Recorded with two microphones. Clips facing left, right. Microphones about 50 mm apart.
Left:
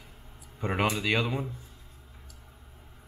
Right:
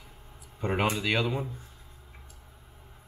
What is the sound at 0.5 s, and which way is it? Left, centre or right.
Speech, centre.